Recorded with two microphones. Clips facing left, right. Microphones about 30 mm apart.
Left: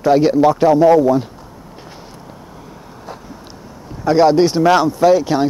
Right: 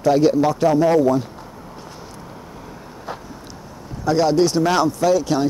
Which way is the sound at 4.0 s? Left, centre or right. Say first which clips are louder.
Left 5 dB; left.